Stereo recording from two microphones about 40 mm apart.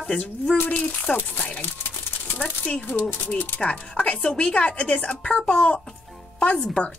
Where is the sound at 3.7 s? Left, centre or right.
Left.